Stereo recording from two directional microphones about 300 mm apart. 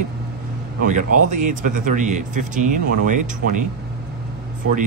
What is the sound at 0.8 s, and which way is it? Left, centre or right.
Speech, right.